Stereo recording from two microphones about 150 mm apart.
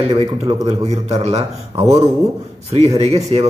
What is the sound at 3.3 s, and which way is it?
Speech, 40° right (ahead or behind).